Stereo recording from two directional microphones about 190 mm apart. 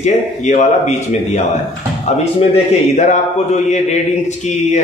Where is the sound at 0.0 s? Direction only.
40° left (ahead or behind).